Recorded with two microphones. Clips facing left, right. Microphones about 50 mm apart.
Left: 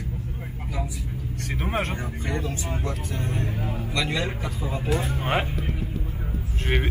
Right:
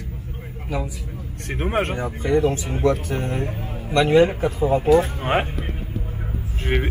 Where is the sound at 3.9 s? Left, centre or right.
Right.